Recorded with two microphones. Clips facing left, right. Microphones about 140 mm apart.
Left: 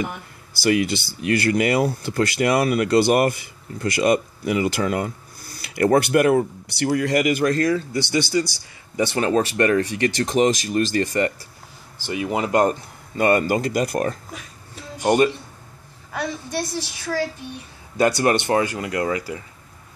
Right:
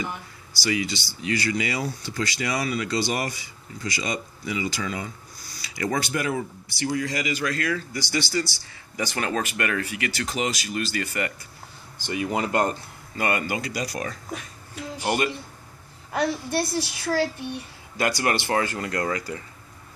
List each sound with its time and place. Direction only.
0.7 s speech: 55° left (ahead or behind)
7.7 s speech: 25° left (ahead or behind)
12.4 s speech: 20° left (ahead or behind)
13.3 s speech: 40° left (ahead or behind)
16.1 s a woman's voice: 10° right (ahead or behind)
17.9 s speech: 30° left (ahead or behind)